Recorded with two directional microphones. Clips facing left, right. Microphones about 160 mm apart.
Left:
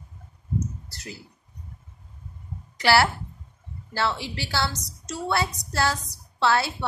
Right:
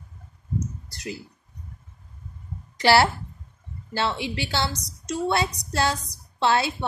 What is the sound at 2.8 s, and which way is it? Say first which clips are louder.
A woman's voice: right 2 dB; 25° right (ahead or behind).